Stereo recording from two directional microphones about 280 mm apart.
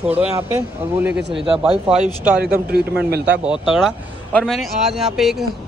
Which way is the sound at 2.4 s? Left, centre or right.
Right.